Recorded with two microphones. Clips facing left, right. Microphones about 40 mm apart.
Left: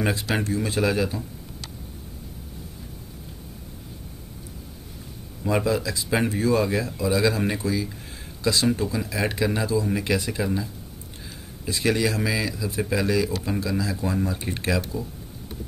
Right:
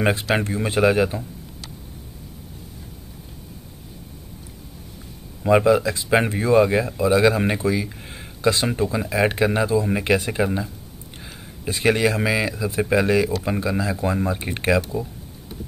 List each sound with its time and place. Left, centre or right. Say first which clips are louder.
0.0 s speech: right 4 dB; right
5.4 s speech: right 7 dB; right